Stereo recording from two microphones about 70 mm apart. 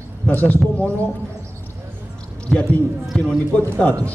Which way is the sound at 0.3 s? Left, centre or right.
Left.